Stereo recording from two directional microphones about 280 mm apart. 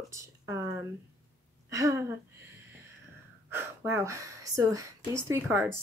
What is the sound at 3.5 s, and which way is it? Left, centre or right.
Speech, centre.